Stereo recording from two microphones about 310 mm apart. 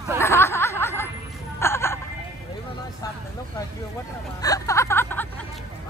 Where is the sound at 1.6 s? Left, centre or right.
Centre.